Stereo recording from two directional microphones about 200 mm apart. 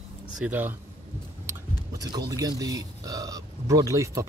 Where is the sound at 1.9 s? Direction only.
20° right (ahead or behind).